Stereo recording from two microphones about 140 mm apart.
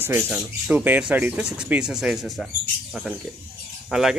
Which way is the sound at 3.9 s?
5° right (ahead or behind).